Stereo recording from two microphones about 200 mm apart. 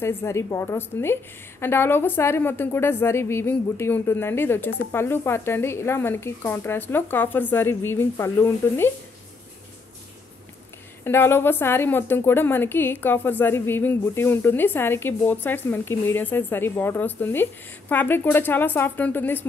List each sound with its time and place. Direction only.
0.0 s a woman's voice: 15° left (ahead or behind)
11.1 s a woman's voice: 10° left (ahead or behind)